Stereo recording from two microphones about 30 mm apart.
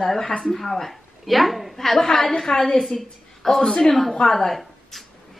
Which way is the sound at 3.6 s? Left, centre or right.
Centre.